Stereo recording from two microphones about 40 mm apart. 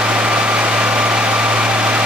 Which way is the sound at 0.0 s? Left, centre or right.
Right.